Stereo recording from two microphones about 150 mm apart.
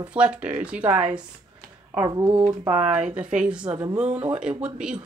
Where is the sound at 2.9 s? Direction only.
5° right (ahead or behind).